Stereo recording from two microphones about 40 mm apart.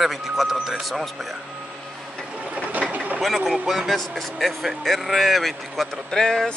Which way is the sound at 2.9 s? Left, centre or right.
Right.